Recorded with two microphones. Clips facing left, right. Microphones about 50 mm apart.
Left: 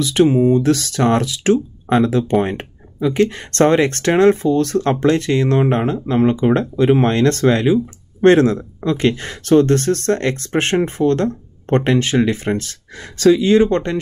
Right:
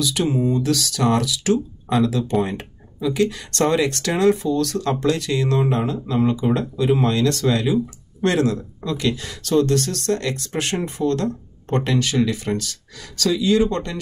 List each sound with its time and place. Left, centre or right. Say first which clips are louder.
0.0 s speech: left 7 dB; left